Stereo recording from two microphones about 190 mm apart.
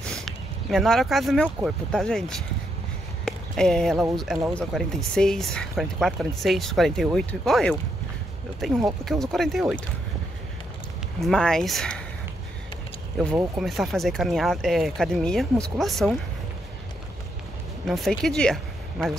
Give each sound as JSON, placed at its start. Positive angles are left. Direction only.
{"t": 0.0, "sound": "speech", "side_deg": 0}
{"t": 11.1, "sound": "speech", "side_deg": 5}
{"t": 13.3, "sound": "speech", "side_deg": -5}
{"t": 17.8, "sound": "speech", "side_deg": 0}